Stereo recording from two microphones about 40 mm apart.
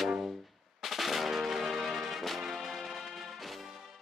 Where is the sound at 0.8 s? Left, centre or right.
Centre.